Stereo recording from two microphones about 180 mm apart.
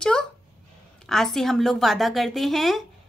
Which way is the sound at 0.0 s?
5° left (ahead or behind).